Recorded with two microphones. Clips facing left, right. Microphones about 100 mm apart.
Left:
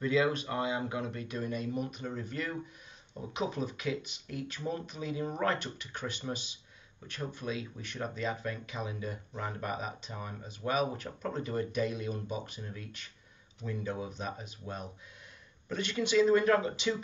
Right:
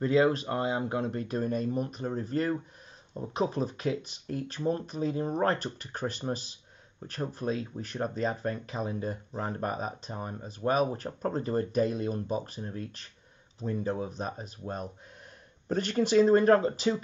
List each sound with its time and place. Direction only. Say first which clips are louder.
0.0 s speech: right 5 dB; 35° right (ahead or behind)
15.7 s speech: right 5 dB; 40° right (ahead or behind)